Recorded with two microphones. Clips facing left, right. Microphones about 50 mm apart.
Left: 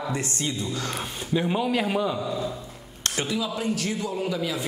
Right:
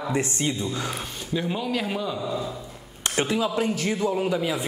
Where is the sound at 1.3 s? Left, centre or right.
Centre.